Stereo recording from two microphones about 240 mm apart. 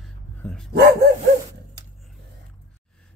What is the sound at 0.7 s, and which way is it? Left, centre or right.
Dog, right.